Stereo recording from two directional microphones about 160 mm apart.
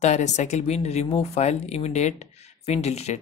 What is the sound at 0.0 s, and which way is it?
Speech, 45° left (ahead or behind).